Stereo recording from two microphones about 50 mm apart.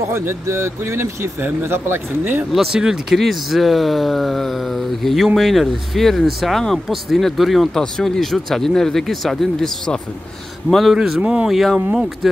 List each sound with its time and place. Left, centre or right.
0.1 s speech: right
1.6 s speech: right
2.7 s speech: centre
3.2 s speech: centre
10.7 s speech: centre
11.0 s speech: centre
11.4 s speech: centre
11.9 s speech: centre